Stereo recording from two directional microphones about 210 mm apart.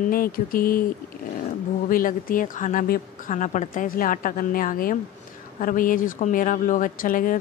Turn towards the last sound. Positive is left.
turn(degrees=40)  # may be behind; listen again after turning